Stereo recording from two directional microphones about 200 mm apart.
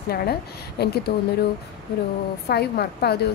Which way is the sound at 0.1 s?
50° left (ahead or behind).